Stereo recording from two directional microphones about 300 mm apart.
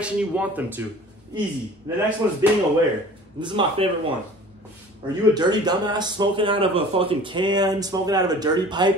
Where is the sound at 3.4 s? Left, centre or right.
Centre.